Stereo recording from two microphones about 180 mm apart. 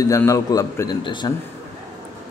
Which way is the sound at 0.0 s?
15° left (ahead or behind).